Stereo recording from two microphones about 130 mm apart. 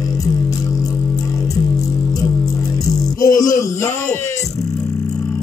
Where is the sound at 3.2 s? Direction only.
25° left (ahead or behind).